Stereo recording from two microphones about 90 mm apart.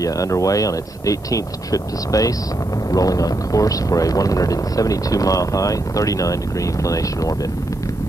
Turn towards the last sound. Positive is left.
turn(degrees=40)  # may be behind; listen again after turning